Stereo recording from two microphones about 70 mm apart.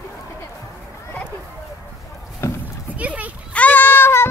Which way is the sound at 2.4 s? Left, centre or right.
Left.